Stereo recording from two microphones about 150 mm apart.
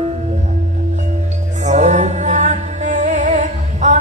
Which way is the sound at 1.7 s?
50° right (ahead or behind).